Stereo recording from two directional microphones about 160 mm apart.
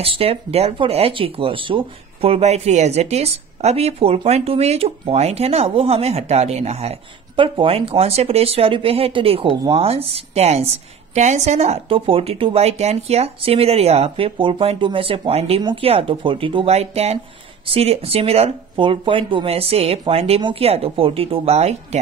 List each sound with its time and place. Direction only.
0.0 s speech: 35° right (ahead or behind)